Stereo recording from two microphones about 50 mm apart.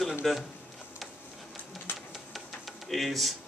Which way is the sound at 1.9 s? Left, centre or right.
Left.